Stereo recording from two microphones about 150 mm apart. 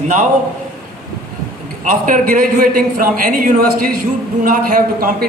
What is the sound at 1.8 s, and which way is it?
A man's voice, 60° right (ahead or behind).